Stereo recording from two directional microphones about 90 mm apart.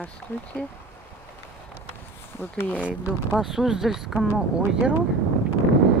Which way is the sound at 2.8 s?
15° right (ahead or behind).